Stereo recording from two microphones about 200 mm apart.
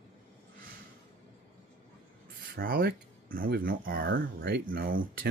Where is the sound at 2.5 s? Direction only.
50° right (ahead or behind).